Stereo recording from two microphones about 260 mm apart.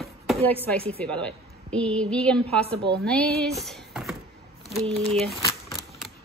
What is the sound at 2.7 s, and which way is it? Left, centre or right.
Speech, right.